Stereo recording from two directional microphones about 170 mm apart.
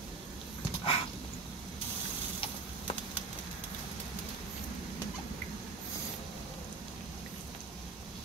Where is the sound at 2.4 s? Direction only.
30° left (ahead or behind).